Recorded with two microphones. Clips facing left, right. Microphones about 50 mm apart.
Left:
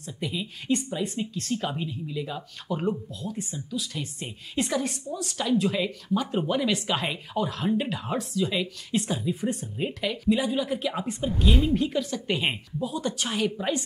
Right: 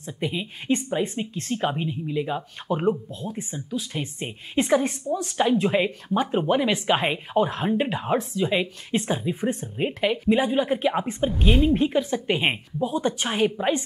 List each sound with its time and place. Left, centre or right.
0.0 s speech: right